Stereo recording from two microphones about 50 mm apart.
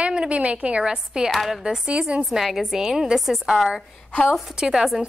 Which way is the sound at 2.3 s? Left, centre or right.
Centre.